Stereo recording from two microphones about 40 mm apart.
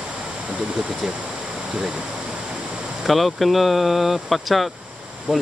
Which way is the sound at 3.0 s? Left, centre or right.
Centre.